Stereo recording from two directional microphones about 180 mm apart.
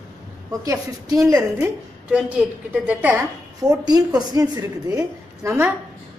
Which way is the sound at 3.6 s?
20° right (ahead or behind).